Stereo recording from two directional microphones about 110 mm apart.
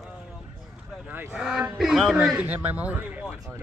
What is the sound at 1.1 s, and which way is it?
Speech, 15° right (ahead or behind).